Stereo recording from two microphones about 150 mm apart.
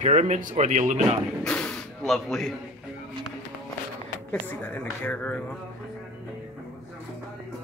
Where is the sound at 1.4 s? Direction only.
5° left (ahead or behind).